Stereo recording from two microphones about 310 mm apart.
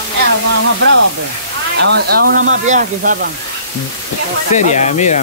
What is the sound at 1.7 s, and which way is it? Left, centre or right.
Speech, right.